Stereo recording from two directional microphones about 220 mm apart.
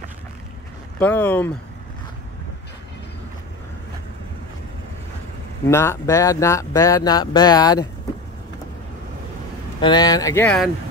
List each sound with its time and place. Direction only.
0.9 s speech: 5° left (ahead or behind)
5.7 s speech: 10° left (ahead or behind)
9.8 s speech: 20° left (ahead or behind)